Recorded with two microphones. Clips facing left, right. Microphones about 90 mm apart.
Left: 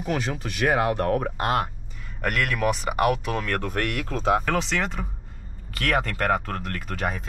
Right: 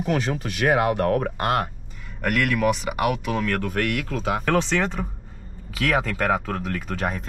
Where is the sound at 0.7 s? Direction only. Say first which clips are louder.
Right 2 dB; 65° right (ahead or behind).